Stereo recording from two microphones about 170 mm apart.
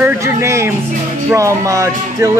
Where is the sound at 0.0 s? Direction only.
15° right (ahead or behind).